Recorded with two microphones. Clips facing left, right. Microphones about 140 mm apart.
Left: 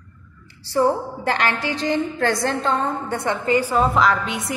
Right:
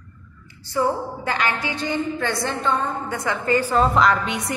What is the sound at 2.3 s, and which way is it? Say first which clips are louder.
A woman's voice: left 2 dB; 40° left (ahead or behind).